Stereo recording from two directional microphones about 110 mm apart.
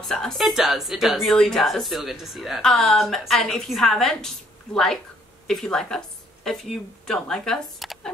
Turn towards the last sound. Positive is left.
turn(degrees=5)  # may be behind; listen again after turning